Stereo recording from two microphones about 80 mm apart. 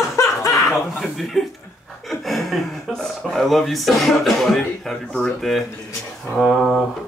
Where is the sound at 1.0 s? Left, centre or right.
Centre.